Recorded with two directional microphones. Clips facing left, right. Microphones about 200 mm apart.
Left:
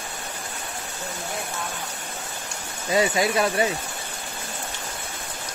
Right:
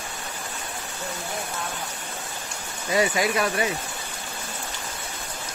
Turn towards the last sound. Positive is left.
turn(degrees=25)  # may be behind; listen again after turning